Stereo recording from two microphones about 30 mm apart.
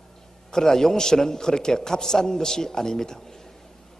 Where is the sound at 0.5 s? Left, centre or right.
Centre.